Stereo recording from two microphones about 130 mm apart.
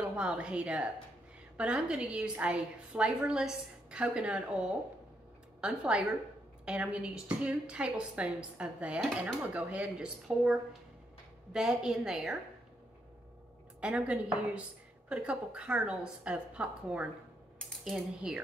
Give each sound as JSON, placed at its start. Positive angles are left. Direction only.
{"t": 0.0, "sound": "a woman's voice", "side_deg": -10}
{"t": 13.7, "sound": "a woman's voice", "side_deg": -10}
{"t": 17.6, "sound": "speech", "side_deg": 0}